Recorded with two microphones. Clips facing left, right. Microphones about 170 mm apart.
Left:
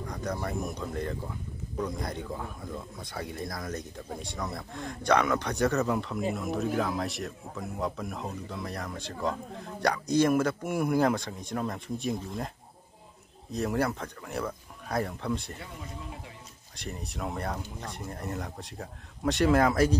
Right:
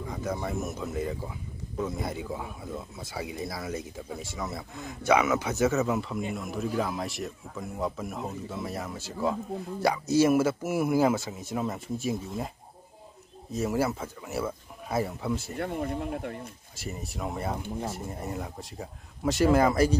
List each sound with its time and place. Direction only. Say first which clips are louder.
0.0 s speech: right 1 dB; 5° right (ahead or behind)
13.5 s speech: right 1 dB; centre (ahead or behind)
15.5 s speech: right 12 dB; 60° right (ahead or behind)
16.7 s speech: right 1 dB; 5° right (ahead or behind)